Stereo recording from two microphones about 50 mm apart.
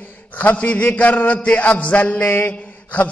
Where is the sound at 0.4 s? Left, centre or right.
Left.